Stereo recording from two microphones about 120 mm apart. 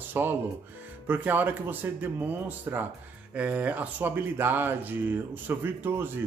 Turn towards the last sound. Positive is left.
turn(degrees=-20)  # may be behind; listen again after turning